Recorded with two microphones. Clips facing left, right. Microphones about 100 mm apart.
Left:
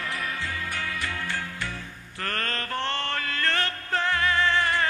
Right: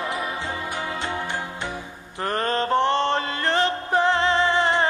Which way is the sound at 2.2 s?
20° right (ahead or behind).